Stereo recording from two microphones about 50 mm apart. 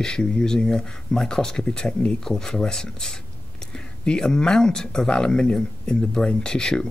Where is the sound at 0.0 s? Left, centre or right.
Centre.